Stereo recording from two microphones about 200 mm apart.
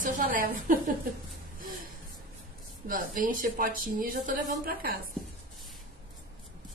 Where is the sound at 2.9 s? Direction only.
45° right (ahead or behind).